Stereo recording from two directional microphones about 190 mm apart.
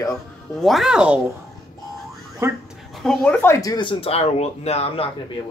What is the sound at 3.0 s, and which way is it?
Speech, 5° left (ahead or behind).